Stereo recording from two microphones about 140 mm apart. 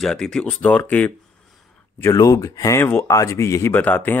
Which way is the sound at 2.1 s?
25° left (ahead or behind).